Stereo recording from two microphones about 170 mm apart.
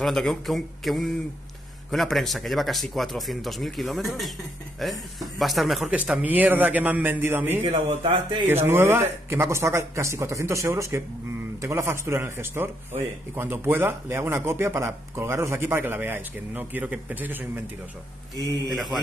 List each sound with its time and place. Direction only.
0.0 s a man's voice: centre (ahead or behind)
7.6 s a man's voice: 30° right (ahead or behind)
8.6 s a man's voice: 15° right (ahead or behind)
18.7 s speech: centre (ahead or behind)